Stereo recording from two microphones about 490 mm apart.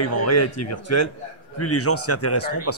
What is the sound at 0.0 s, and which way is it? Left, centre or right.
A man's voice, left.